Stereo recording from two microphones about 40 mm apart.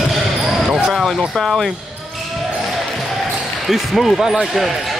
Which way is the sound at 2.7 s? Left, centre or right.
Centre.